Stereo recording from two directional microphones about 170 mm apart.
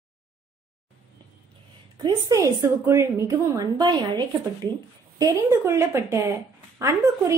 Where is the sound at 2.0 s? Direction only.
20° right (ahead or behind).